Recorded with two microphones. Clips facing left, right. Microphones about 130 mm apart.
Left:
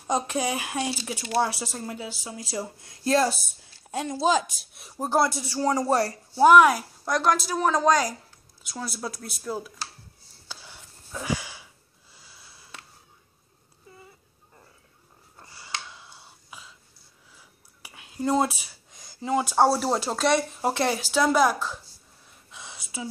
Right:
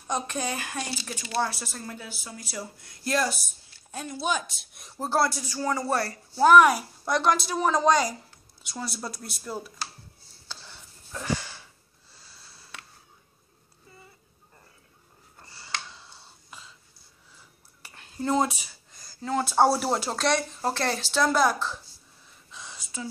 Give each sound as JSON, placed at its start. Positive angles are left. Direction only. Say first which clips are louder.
{"t": 0.3, "sound": "speech", "louder": "left 4 dB", "side_deg": 15}
{"t": 4.2, "sound": "speech", "louder": "left 6 dB", "side_deg": 90}
{"t": 4.7, "sound": "speech", "louder": "left 2 dB", "side_deg": 10}
{"t": 5.9, "sound": "speech", "louder": "left 4 dB", "side_deg": 20}
{"t": 6.5, "sound": "speech", "louder": "right 1 dB", "side_deg": 0}
{"t": 10.5, "sound": "a sound", "louder": "left 1 dB", "side_deg": 10}
{"t": 15.3, "sound": "a sound", "louder": "even", "side_deg": 10}
{"t": 19.7, "sound": "speech", "louder": "left 1 dB", "side_deg": -5}
{"t": 22.5, "sound": "a sound", "louder": "left 1 dB", "side_deg": 5}